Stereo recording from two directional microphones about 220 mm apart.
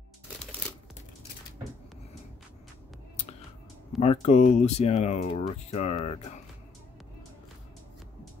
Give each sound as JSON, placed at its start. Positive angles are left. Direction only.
{"t": 4.0, "sound": "speech", "side_deg": 30}